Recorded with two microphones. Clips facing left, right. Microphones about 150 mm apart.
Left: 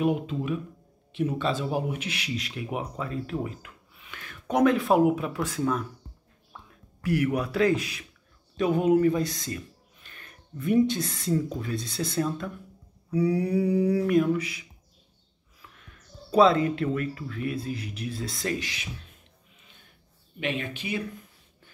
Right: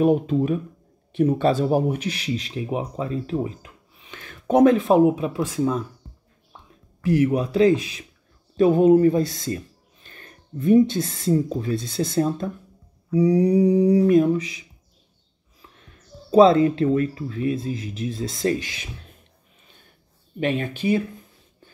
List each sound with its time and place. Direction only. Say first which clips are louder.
0.0 s speech: right 8 dB; 40° right (ahead or behind)
13.1 s speech: right 7 dB; 20° right (ahead or behind)
15.6 s speech: right 2 dB; 30° right (ahead or behind)
20.3 s speech: right 7 dB; 40° right (ahead or behind)